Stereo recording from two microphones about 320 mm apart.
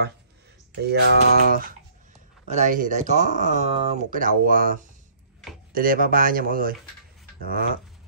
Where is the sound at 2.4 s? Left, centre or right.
Right.